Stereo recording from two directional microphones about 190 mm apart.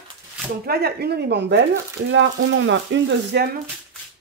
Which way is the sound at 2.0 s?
80° right.